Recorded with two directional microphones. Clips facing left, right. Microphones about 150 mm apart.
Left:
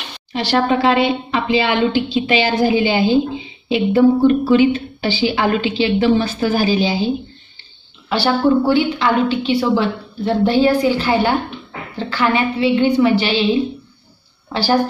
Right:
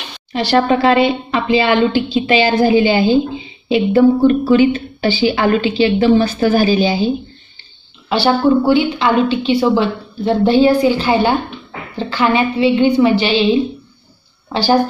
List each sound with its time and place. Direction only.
0.3 s a woman's voice: 45° right (ahead or behind)
8.1 s a woman's voice: 20° right (ahead or behind)
14.5 s speech: 20° right (ahead or behind)